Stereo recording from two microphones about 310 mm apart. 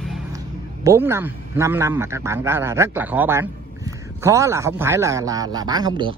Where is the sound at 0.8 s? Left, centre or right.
Centre.